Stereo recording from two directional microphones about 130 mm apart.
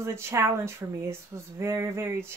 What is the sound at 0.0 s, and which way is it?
Speech, 20° right (ahead or behind).